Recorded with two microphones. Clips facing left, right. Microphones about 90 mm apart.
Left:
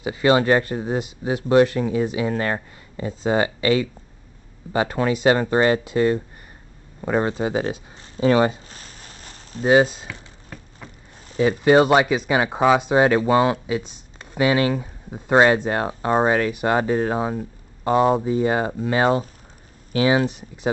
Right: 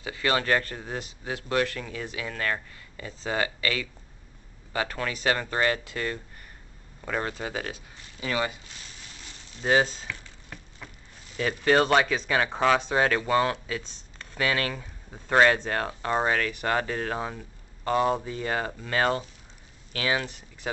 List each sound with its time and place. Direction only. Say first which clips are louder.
0.0 s speech: left 9 dB; 20° left (ahead or behind)
7.0 s a sound: left 9 dB; 25° left (ahead or behind); by 9.7 s 40° left (ahead or behind)
9.7 s speech: left 7 dB; 15° left (ahead or behind)
11.3 s speech: left 7 dB; 15° left (ahead or behind)